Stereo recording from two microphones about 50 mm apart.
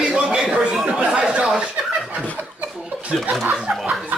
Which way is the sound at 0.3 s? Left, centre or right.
Centre.